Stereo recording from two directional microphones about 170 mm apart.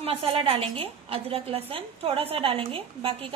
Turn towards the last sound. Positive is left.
turn(degrees=-30)  # may be behind; listen again after turning